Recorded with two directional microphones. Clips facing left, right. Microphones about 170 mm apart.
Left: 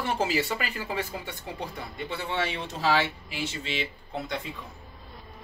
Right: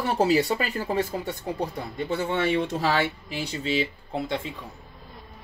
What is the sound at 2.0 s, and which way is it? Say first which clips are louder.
Speech: right 6 dB; 45° right (ahead or behind).